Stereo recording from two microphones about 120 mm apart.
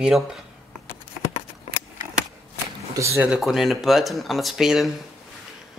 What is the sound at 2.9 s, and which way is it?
Speech, 25° right (ahead or behind).